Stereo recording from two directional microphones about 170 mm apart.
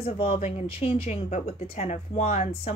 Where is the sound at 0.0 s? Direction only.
35° left (ahead or behind).